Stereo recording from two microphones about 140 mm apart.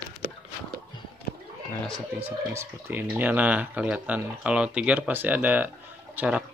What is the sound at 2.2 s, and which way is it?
Speech, 15° right (ahead or behind).